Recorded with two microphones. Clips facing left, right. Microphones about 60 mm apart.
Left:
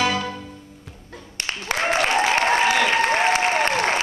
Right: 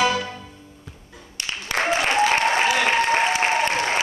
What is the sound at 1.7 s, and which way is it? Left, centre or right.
Applause, left.